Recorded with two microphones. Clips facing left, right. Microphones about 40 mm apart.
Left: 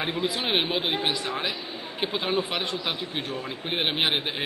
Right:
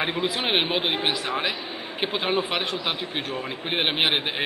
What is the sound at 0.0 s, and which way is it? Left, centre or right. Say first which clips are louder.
A man's voice: right 2 dB; right.